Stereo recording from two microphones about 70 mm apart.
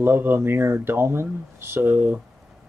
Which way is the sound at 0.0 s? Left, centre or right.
Right.